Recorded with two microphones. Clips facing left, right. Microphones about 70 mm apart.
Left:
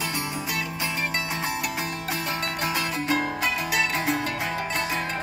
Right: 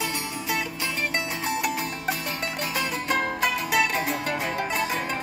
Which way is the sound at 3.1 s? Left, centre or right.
Centre.